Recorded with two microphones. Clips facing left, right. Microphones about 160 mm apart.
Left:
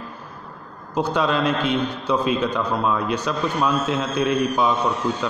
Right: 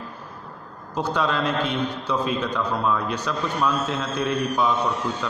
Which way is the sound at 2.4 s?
20° left (ahead or behind).